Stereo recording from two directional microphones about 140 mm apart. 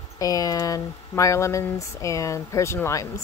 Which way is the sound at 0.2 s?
25° left (ahead or behind).